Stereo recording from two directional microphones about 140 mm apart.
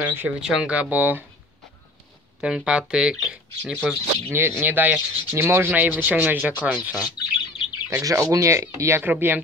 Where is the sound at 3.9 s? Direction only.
15° right (ahead or behind).